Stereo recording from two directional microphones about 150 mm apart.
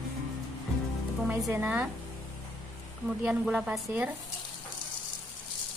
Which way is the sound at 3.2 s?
5° right (ahead or behind).